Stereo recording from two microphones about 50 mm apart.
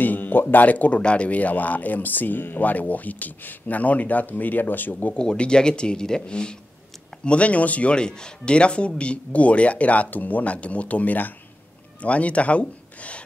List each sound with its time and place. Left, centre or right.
0.0 s speech: left
5.1 s speech: centre